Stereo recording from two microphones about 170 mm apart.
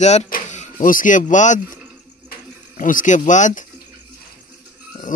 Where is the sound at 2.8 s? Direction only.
50° left (ahead or behind).